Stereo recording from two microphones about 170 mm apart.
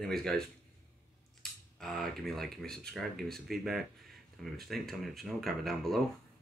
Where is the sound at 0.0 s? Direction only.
5° left (ahead or behind).